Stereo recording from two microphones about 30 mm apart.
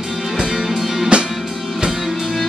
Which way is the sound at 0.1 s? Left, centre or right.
Centre.